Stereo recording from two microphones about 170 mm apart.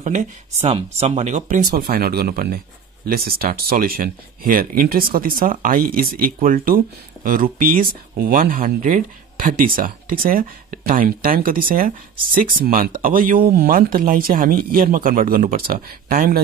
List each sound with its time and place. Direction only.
0.0 s speech: 45° right (ahead or behind)